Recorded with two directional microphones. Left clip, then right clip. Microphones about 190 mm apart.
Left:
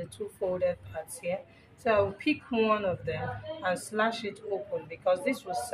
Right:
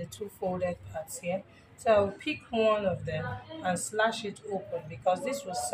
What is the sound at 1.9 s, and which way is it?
Speech, 50° left (ahead or behind).